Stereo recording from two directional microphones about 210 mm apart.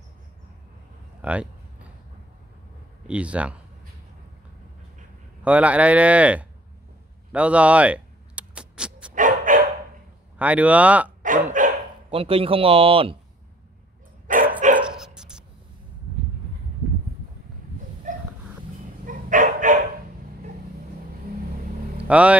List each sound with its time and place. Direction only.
1.2 s speech: 5° right (ahead or behind)
3.1 s speech: 5° right (ahead or behind)
5.4 s speech: 5° right (ahead or behind)
7.3 s a sound: 5° right (ahead or behind)
9.1 s dog: 40° right (ahead or behind)
10.4 s speech: 5° right (ahead or behind)
11.6 s dog: 40° right (ahead or behind)
12.1 s speech: 25° right (ahead or behind)
14.2 s dog: 40° right (ahead or behind)
14.8 s dog: 5° right (ahead or behind)
18.1 s a sound: 35° right (ahead or behind)
19.0 s bow-wow: 40° right (ahead or behind)
22.0 s speech: 5° right (ahead or behind)